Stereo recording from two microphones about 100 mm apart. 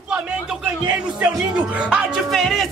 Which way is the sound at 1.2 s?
10° right (ahead or behind).